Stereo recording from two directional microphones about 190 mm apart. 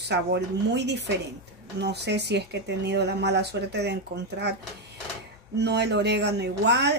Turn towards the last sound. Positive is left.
turn(degrees=-60)  # may be behind; listen again after turning